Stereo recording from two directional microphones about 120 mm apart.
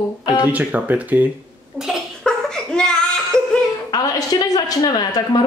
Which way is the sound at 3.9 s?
35° left (ahead or behind).